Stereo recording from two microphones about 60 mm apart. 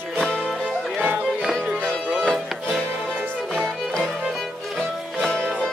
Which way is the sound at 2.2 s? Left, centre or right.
Centre.